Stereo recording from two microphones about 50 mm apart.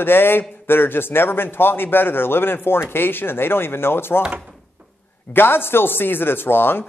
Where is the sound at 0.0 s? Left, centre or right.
Left.